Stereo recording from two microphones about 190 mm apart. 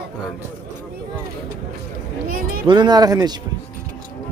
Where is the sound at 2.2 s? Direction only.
50° right (ahead or behind).